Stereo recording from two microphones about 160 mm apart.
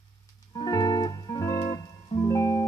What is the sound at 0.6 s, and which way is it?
Music, 25° left (ahead or behind).